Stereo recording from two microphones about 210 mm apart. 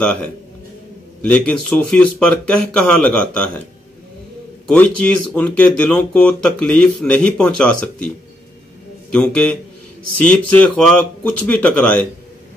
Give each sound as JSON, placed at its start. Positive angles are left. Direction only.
{"t": 0.0, "sound": "speech", "side_deg": 5}
{"t": 1.3, "sound": "speech", "side_deg": 5}
{"t": 4.6, "sound": "speech", "side_deg": 5}
{"t": 9.1, "sound": "speech", "side_deg": 5}